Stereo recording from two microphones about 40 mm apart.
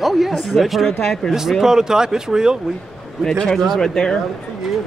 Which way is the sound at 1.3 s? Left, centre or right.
Centre.